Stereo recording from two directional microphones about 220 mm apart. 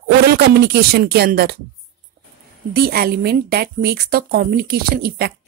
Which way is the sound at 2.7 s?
45° right (ahead or behind).